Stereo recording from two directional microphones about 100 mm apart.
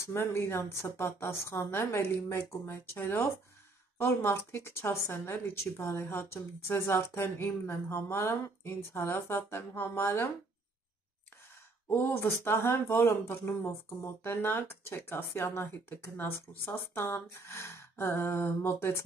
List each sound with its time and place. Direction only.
0.0 s speech: 25° left (ahead or behind)
11.9 s speech: 20° left (ahead or behind)